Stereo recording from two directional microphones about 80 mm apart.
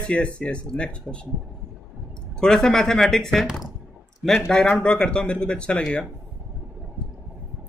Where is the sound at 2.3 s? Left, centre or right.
Centre.